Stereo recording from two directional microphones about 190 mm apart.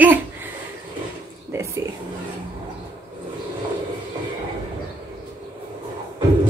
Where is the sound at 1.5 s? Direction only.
15° right (ahead or behind).